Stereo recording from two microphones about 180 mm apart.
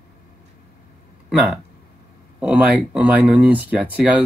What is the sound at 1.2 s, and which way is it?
Speech, 5° right (ahead or behind).